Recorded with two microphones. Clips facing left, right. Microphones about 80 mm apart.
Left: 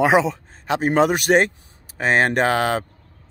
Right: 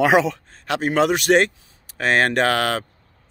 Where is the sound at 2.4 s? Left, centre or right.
Centre.